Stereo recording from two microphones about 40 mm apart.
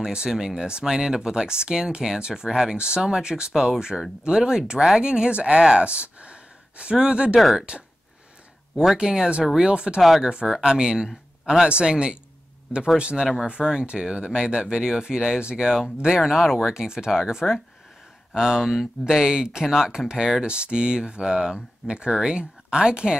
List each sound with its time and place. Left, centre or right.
0.0 s speech: centre
3.7 s speech: centre; by 5.6 s right
5.6 s speech: centre
8.9 s speech: centre